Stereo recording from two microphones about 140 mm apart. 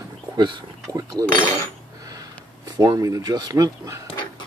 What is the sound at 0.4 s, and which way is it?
Speech, 35° right (ahead or behind).